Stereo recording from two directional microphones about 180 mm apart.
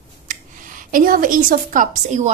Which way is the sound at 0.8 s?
50° right (ahead or behind).